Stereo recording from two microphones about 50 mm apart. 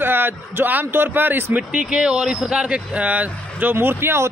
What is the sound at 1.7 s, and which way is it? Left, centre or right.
Speech, right.